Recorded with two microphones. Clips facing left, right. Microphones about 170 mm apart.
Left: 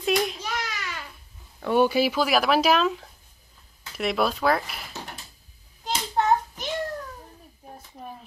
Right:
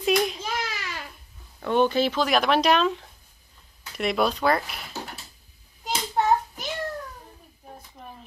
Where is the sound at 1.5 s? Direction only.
10° left (ahead or behind).